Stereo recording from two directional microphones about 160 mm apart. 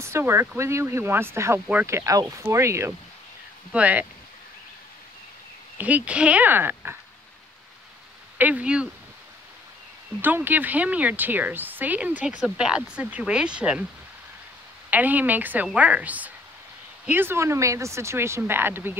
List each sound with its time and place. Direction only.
0.0 s speech: 15° right (ahead or behind)
5.8 s speech: 10° right (ahead or behind)
8.4 s speech: 10° right (ahead or behind)
10.2 s speech: 10° right (ahead or behind)
14.9 s speech: 10° right (ahead or behind)